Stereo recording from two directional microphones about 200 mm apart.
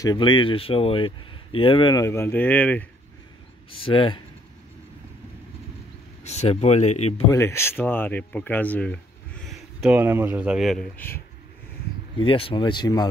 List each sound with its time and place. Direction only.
0.0 s speech: 25° left (ahead or behind); by 2.9 s 10° left (ahead or behind)
3.7 s speech: 25° left (ahead or behind)
6.2 s speech: 35° left (ahead or behind)
7.2 s speech: 15° left (ahead or behind)
9.8 s speech: 10° right (ahead or behind); by 11.2 s 10° left (ahead or behind)
12.2 s speech: 25° left (ahead or behind)